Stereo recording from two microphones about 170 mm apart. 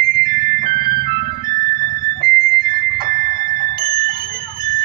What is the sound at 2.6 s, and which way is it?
Fire alarm, 55° right (ahead or behind).